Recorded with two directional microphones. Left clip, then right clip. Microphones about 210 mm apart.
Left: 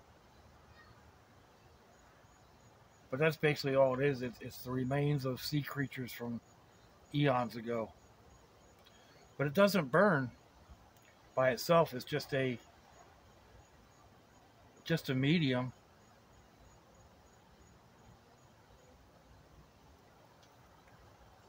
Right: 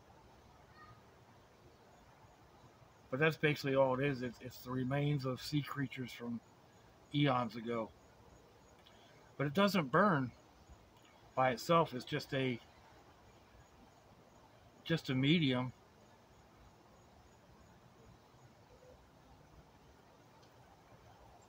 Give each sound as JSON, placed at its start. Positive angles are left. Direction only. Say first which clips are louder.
{"t": 3.1, "sound": "speech", "louder": "left 2 dB", "side_deg": 25}
{"t": 9.4, "sound": "speech", "louder": "left 4 dB", "side_deg": 25}
{"t": 11.3, "sound": "speech", "louder": "left 3 dB", "side_deg": 25}
{"t": 14.8, "sound": "speech", "louder": "left 2 dB", "side_deg": 25}